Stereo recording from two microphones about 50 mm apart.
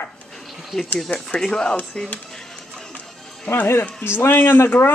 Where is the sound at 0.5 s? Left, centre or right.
Centre.